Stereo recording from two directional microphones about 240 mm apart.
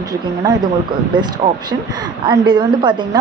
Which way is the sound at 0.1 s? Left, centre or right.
Centre.